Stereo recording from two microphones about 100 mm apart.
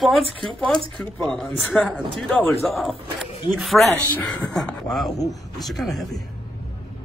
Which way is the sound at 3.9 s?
20° left (ahead or behind).